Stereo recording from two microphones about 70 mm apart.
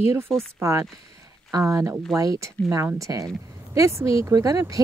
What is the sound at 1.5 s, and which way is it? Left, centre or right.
Speech, right.